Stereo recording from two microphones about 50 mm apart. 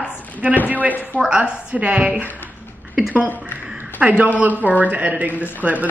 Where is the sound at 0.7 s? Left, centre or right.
Right.